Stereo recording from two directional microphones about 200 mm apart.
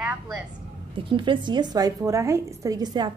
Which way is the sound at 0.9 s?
25° right (ahead or behind).